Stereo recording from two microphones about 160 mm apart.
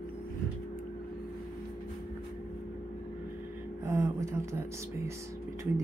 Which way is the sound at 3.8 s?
20° right (ahead or behind).